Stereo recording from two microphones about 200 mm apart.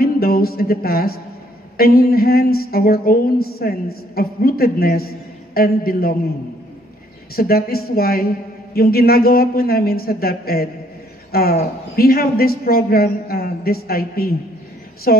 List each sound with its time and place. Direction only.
0.0 s a sound: 50° left (ahead or behind)
1.8 s a man's voice: 50° left (ahead or behind)
7.3 s a man's voice: 50° left (ahead or behind)